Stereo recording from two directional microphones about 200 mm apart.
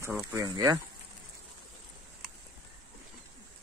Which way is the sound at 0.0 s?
15° right (ahead or behind).